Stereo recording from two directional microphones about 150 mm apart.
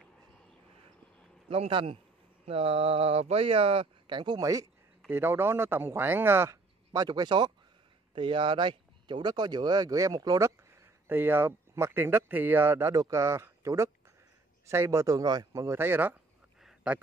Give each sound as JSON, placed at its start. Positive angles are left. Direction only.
{"t": 1.5, "sound": "speech", "side_deg": -35}
{"t": 11.1, "sound": "speech", "side_deg": -15}
{"t": 16.6, "sound": "a sound", "side_deg": -10}